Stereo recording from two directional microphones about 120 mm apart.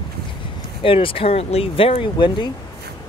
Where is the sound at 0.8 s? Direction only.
50° left (ahead or behind).